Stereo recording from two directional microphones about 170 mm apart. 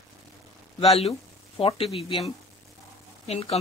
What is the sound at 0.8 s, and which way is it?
Speech, 35° left (ahead or behind).